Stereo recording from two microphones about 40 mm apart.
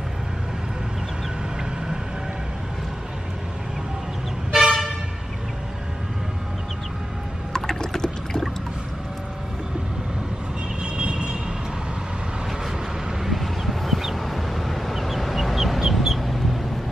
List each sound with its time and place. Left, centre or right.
4.5 s toot: centre
7.5 s rowboat: centre
10.8 s vehicle: right
13.2 s a sound: centre